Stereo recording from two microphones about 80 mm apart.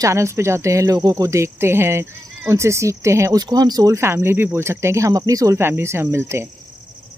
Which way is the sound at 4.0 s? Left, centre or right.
Right.